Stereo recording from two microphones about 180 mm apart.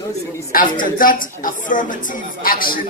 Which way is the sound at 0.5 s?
50° left (ahead or behind).